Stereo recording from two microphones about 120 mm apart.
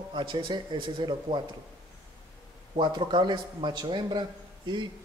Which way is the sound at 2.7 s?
40° right (ahead or behind).